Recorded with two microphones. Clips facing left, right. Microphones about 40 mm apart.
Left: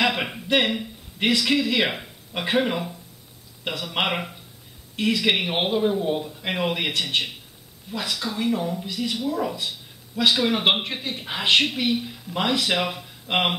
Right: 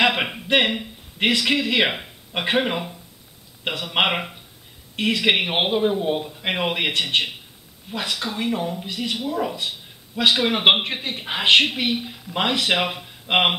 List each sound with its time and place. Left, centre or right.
0.0 s a man's voice: right